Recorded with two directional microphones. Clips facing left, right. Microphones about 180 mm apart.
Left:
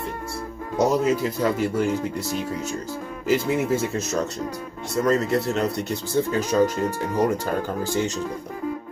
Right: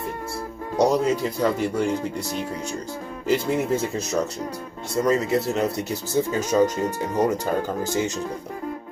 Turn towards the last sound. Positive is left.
turn(degrees=-20)  # may be behind; listen again after turning